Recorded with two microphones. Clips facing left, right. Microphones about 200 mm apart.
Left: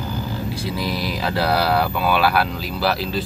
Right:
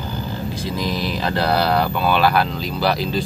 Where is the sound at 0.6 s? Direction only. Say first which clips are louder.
Right 2 dB; 10° left (ahead or behind).